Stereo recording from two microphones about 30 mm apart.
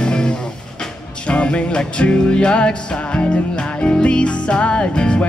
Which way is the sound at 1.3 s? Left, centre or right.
Left.